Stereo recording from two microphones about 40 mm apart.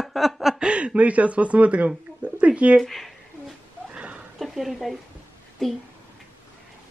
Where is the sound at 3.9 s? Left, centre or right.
Right.